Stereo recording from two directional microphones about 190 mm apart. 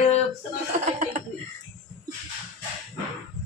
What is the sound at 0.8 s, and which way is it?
Chuckle, 40° right (ahead or behind).